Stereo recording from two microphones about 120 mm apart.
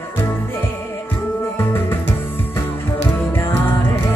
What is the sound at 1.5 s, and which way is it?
Music, 20° left (ahead or behind).